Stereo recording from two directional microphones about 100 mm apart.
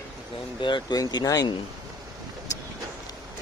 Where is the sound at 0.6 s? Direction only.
50° left (ahead or behind).